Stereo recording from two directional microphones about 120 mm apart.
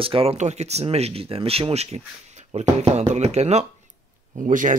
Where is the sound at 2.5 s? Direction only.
75° right (ahead or behind).